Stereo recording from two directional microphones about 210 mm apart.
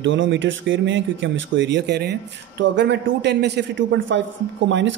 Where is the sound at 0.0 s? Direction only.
65° right (ahead or behind).